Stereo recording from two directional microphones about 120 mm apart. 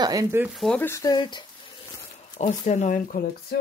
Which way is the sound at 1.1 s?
40° left (ahead or behind).